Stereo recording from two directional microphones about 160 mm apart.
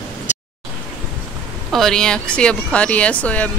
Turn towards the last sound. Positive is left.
turn(degrees=10)  # may be behind; listen again after turning